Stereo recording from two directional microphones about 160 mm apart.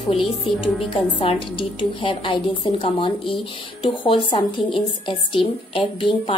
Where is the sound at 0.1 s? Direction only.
35° left (ahead or behind).